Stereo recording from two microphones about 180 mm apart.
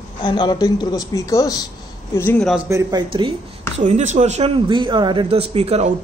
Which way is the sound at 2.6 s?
20° right (ahead or behind).